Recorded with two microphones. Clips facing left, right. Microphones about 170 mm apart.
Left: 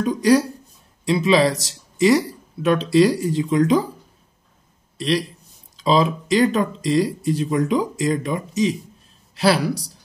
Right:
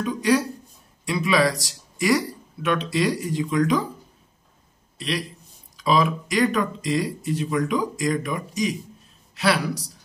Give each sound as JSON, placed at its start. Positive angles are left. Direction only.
{"t": 0.0, "sound": "speech", "side_deg": 35}
{"t": 4.9, "sound": "a man's voice", "side_deg": 35}